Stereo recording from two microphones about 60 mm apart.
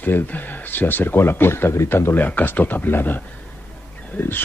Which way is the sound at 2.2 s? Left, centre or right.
Left.